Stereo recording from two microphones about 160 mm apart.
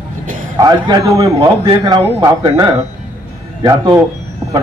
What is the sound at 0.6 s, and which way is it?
A man's voice, 25° right (ahead or behind).